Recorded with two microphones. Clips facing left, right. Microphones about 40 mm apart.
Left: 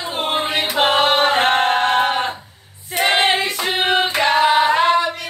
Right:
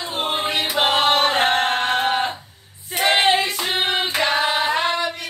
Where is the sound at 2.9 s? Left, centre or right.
Centre.